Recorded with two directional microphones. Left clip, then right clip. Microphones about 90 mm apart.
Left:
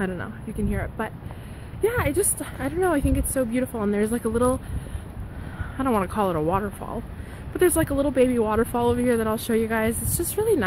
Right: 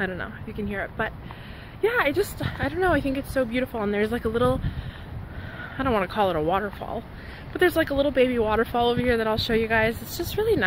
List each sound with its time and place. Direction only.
0.0 s speech: 40° left (ahead or behind)
1.9 s speech: 20° left (ahead or behind)
2.7 s speech: 30° left (ahead or behind)
5.6 s speech: 35° left (ahead or behind)
7.5 s speech: 50° left (ahead or behind)
7.9 s speech: 40° left (ahead or behind)
10.1 s speech: 60° left (ahead or behind)